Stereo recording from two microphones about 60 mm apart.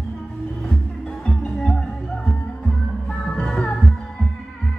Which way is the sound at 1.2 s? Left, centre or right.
Centre.